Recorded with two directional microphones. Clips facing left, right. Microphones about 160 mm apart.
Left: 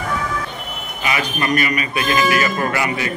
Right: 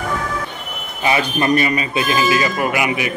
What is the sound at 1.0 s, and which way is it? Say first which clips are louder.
A man's voice: right 4 dB; 30° right (ahead or behind).